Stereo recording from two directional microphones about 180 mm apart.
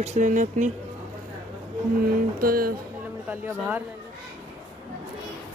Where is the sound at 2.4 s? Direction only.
55° right (ahead or behind).